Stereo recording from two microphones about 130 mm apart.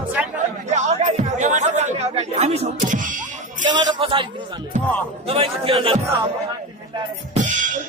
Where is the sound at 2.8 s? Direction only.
80° right.